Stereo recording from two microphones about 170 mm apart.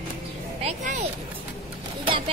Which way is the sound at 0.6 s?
40° right (ahead or behind).